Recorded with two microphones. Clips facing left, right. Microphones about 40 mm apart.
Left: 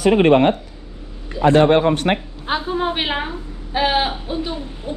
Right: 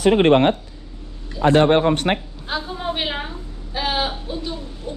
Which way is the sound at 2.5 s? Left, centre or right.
Left.